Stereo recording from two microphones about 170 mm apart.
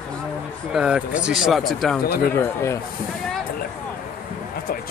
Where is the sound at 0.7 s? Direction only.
5° right (ahead or behind).